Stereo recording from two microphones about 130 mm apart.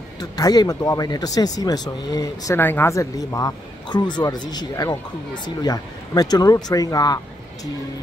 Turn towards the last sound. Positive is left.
turn(degrees=30)  # may be behind; listen again after turning